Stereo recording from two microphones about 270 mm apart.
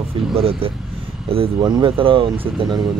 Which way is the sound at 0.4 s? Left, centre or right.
Right.